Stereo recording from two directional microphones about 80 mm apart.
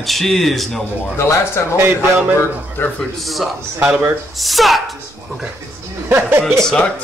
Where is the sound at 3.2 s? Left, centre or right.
Centre.